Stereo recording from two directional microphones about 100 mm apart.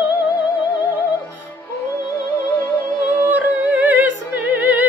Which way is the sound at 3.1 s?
20° right (ahead or behind).